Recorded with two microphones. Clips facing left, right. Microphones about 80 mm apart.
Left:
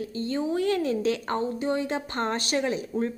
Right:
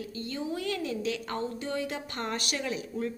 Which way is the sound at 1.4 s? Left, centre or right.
Left.